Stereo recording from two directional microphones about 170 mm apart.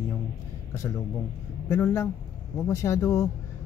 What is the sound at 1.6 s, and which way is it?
Speech, 15° left (ahead or behind).